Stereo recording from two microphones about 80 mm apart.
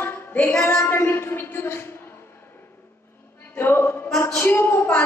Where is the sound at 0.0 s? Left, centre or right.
Left.